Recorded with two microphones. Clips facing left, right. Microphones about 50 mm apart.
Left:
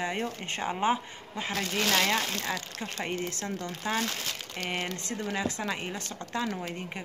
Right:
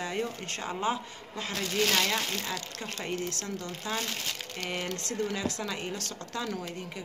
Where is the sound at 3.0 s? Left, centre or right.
Left.